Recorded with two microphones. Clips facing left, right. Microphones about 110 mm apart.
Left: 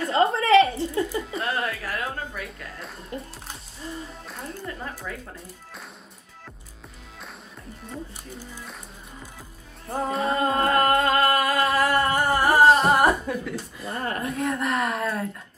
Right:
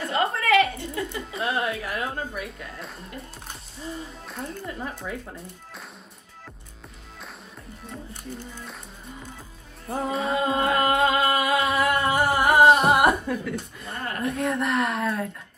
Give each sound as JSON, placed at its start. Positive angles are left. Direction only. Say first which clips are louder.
{"t": 0.1, "sound": "a sound", "louder": "left 4 dB", "side_deg": 30}
{"t": 1.0, "sound": "a sound", "louder": "left 1 dB", "side_deg": 0}
{"t": 1.6, "sound": "a sound", "louder": "right 1 dB", "side_deg": -15}
{"t": 2.4, "sound": "speech", "louder": "right 1 dB", "side_deg": 0}
{"t": 4.3, "sound": "music", "louder": "right 2 dB", "side_deg": 0}
{"t": 8.4, "sound": "speech", "louder": "right 1 dB", "side_deg": 10}
{"t": 9.8, "sound": "music", "louder": "left 1 dB", "side_deg": 0}
{"t": 12.3, "sound": "music", "louder": "right 1 dB", "side_deg": -15}
{"t": 13.3, "sound": "chuckle", "louder": "right 1 dB", "side_deg": 0}
{"t": 14.2, "sound": "speech", "louder": "right 4 dB", "side_deg": 0}